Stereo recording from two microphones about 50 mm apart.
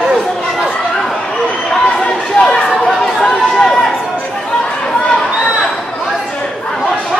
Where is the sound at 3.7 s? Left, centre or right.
Centre.